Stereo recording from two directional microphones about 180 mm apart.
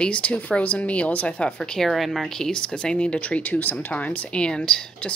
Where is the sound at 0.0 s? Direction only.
5° left (ahead or behind).